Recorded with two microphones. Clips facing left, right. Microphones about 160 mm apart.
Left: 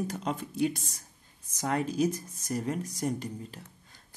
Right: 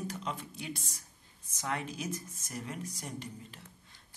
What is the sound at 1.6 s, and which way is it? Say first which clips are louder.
Speech: left 9 dB; 40° left (ahead or behind).